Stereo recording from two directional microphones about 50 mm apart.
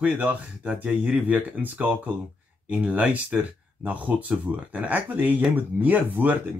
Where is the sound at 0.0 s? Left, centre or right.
Right.